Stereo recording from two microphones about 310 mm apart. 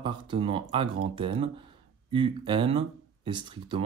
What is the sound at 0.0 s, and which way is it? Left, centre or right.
A man's voice, centre.